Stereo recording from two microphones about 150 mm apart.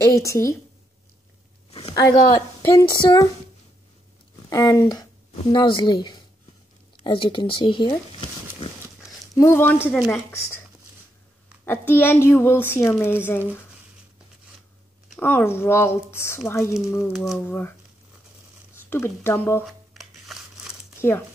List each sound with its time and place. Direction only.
0.0 s a woman's voice: 20° left (ahead or behind)
1.7 s a sound: 40° left (ahead or behind)
2.0 s a woman's voice: 25° left (ahead or behind)
4.5 s a woman's voice: 20° left (ahead or behind)
9.3 s a woman's voice: 20° left (ahead or behind)
11.6 s a woman's voice: 15° left (ahead or behind)
15.1 s a woman's voice: 15° left (ahead or behind)
17.1 s speech: centre (ahead or behind)
17.4 s a woman's voice: 15° left (ahead or behind)
18.9 s a woman's voice: 15° left (ahead or behind)
19.6 s tearing: centre (ahead or behind)